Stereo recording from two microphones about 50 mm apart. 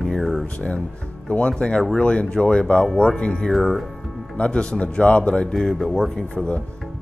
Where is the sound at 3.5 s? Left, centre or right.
Centre.